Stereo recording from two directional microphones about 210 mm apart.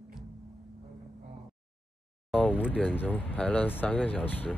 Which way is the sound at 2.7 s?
10° left (ahead or behind).